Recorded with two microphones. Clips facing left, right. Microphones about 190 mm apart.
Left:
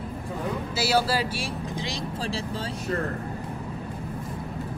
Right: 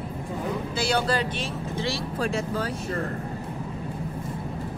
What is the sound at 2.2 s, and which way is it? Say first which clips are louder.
Speech: right 6 dB; 30° left (ahead or behind).